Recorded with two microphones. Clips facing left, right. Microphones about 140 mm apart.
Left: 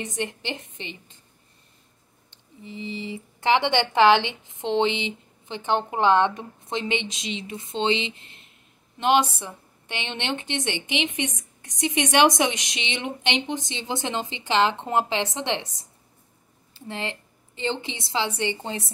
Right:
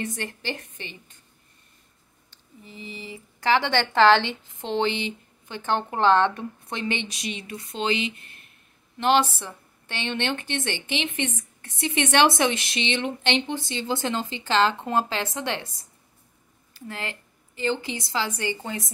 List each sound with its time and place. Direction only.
0.0 s speech: 20° left (ahead or behind)
2.3 s a woman's voice: 25° left (ahead or behind)
16.7 s a woman's voice: 25° left (ahead or behind)